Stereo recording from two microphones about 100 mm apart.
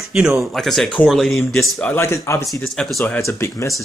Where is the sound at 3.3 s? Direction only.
25° left (ahead or behind).